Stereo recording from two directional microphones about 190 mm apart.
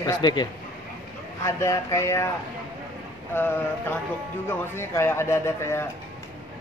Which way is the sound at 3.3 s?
10° left (ahead or behind).